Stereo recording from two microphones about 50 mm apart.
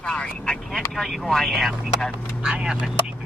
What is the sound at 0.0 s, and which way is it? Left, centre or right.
Vehicle, left.